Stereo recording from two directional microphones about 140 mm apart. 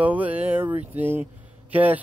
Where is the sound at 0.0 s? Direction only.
10° right (ahead or behind).